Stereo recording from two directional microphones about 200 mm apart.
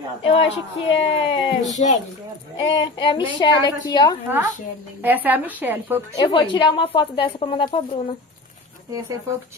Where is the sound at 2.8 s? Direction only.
25° left (ahead or behind).